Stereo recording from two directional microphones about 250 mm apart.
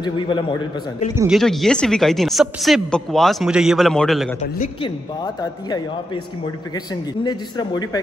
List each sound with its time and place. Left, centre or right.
0.0 s a man's voice: centre
1.1 s a woman's voice: centre
4.4 s a man's voice: left